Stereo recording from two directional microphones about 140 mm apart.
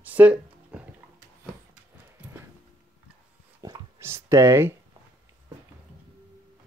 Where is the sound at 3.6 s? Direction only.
25° right (ahead or behind).